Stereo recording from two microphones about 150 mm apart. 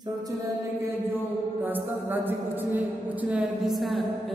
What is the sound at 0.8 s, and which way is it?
Mantra, 15° right (ahead or behind).